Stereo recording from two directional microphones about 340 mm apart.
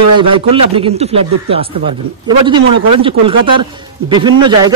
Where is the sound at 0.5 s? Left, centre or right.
Centre.